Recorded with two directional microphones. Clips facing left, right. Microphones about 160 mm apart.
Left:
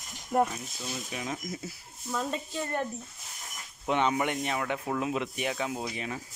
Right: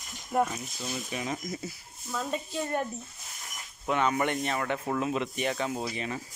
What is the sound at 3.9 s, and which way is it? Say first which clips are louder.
Speech: even; 20° left (ahead or behind).